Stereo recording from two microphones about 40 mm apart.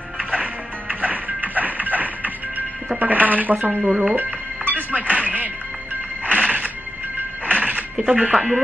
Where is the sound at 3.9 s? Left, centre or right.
Centre.